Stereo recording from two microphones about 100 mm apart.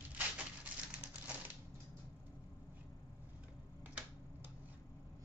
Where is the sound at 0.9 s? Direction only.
15° right (ahead or behind).